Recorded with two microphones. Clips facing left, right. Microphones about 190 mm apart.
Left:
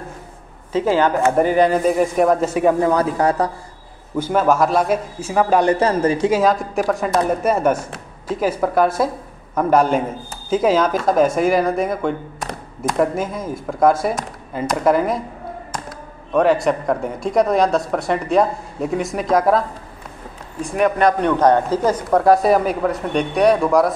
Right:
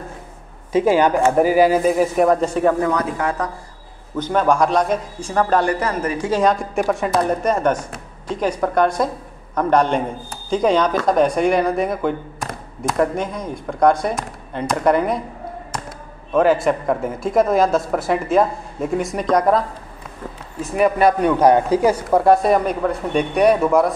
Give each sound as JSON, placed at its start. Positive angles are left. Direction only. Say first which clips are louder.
{"t": 0.7, "sound": "speech", "louder": "right 2 dB", "side_deg": -15}
{"t": 2.8, "sound": "speech", "louder": "left 3 dB", "side_deg": 30}
{"t": 4.2, "sound": "a man's voice", "louder": "left 1 dB", "side_deg": 5}
{"t": 5.7, "sound": "a man's voice", "louder": "left 5 dB", "side_deg": 30}
{"t": 6.3, "sound": "speech", "louder": "left 1 dB", "side_deg": 0}
{"t": 16.3, "sound": "speech", "louder": "even", "side_deg": 0}
{"t": 20.6, "sound": "speech", "louder": "right 1 dB", "side_deg": -5}